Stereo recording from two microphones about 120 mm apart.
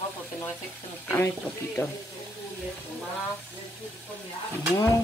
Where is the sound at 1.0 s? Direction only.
20° left (ahead or behind).